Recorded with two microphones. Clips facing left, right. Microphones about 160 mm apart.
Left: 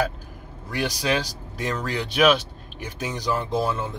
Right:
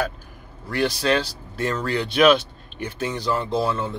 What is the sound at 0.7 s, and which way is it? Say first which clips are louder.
Speech: right 3 dB; 10° left (ahead or behind).